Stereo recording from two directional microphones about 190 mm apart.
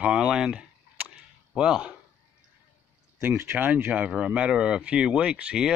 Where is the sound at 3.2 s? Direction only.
10° right (ahead or behind).